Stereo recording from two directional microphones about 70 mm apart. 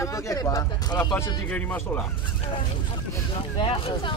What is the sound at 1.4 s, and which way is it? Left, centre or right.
Speech, left.